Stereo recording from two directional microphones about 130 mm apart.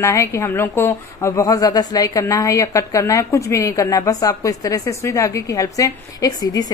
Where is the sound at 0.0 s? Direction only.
20° left (ahead or behind).